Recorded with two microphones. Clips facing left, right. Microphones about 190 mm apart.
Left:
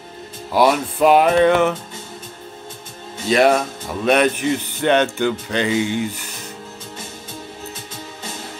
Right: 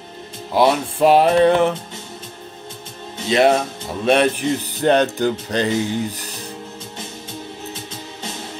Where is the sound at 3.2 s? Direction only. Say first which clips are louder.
Even; 25° right (ahead or behind).